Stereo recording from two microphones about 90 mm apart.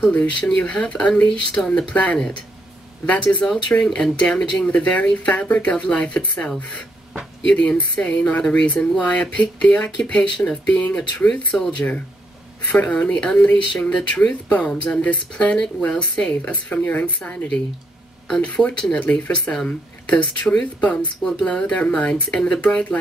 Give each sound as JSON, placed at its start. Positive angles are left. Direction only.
{"t": 0.0, "sound": "speech", "side_deg": 15}
{"t": 11.5, "sound": "speech", "side_deg": 0}
{"t": 12.7, "sound": "speech", "side_deg": 15}